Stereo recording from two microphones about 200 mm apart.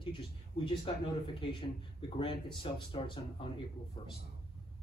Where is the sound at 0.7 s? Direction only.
25° left (ahead or behind).